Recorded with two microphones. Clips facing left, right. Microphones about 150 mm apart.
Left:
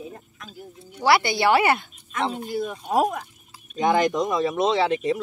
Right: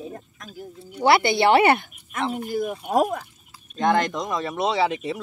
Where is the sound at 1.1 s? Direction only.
25° right (ahead or behind).